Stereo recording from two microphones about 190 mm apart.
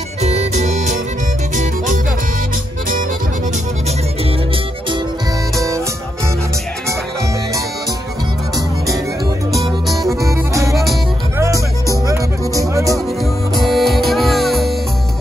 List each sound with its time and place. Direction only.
0.2 s music: 35° right (ahead or behind)
9.7 s music: centre (ahead or behind)
10.2 s music: 15° right (ahead or behind)
12.9 s music: centre (ahead or behind)